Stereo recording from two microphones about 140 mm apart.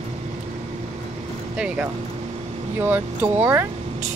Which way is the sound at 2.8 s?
15° right (ahead or behind).